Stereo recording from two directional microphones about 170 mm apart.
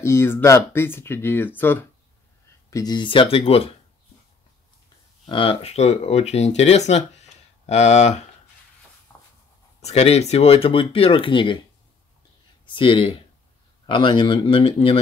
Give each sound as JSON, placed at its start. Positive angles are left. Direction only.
{"t": 0.0, "sound": "speech", "side_deg": 15}
{"t": 2.7, "sound": "speech", "side_deg": 25}
{"t": 5.2, "sound": "speech", "side_deg": 30}
{"t": 9.8, "sound": "speech", "side_deg": 40}
{"t": 12.6, "sound": "speech", "side_deg": 30}